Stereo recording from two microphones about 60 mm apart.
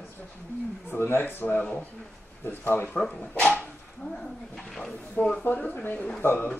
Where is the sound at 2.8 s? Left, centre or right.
Centre.